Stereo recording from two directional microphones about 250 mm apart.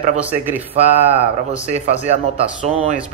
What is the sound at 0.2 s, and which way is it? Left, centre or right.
Speech, centre.